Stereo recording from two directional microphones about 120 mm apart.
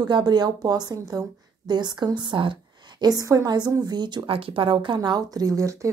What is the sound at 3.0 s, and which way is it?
A woman's voice, 30° right (ahead or behind).